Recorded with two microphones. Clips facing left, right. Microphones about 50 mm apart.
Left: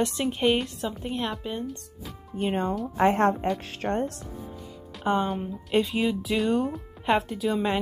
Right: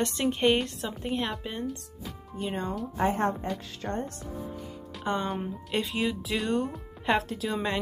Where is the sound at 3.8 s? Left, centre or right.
Left.